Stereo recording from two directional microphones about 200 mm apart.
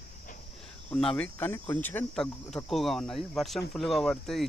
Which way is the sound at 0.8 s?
5° left (ahead or behind).